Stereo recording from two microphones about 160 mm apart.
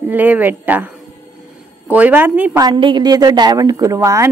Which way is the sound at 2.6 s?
25° right (ahead or behind).